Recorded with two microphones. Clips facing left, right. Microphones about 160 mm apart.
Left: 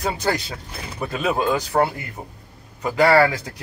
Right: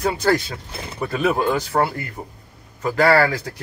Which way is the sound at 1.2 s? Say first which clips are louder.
Right 1 dB; 15° left (ahead or behind).